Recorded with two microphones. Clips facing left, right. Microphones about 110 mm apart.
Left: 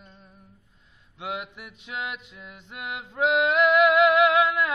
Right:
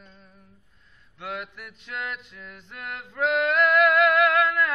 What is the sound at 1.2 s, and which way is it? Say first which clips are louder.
Music: left 1 dB; 10° left (ahead or behind).